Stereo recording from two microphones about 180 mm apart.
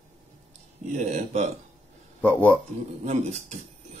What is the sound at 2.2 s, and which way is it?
Speech, 10° left (ahead or behind).